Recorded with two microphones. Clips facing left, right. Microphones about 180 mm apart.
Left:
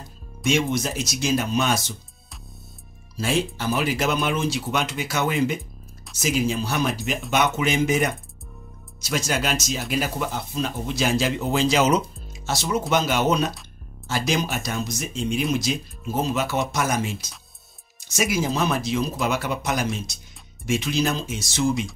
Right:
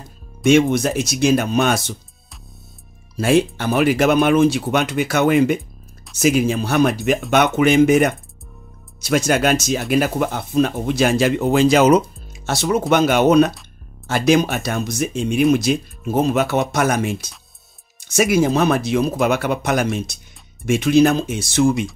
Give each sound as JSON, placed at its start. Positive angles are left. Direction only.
{"t": 0.5, "sound": "speech", "side_deg": -60}
{"t": 3.2, "sound": "speech", "side_deg": -60}